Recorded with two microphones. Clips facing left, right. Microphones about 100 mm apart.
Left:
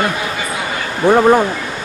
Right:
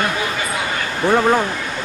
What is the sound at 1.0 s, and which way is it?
Speech, 15° left (ahead or behind).